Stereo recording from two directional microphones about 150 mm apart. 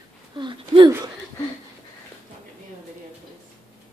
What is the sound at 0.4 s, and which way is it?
Speech, 30° right (ahead or behind).